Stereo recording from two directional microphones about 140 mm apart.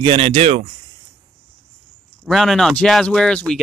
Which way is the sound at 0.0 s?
40° right (ahead or behind).